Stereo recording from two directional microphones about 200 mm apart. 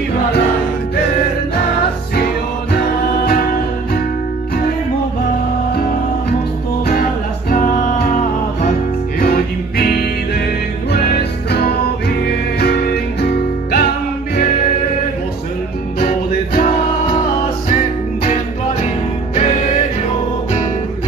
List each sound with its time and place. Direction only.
7.5 s music: 40° left (ahead or behind)
12.5 s music: 50° left (ahead or behind)
16.0 s music: 45° left (ahead or behind)
18.2 s music: 40° left (ahead or behind)